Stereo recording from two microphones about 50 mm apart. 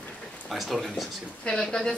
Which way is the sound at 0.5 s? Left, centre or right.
Centre.